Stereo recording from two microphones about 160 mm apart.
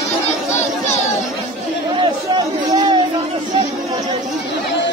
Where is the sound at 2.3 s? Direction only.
30° right (ahead or behind).